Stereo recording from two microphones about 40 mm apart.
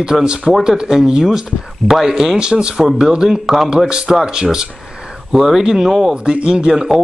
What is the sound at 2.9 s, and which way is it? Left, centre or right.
A man's voice, centre.